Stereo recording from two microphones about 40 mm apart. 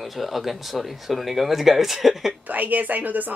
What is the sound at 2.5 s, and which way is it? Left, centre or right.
Speech, right.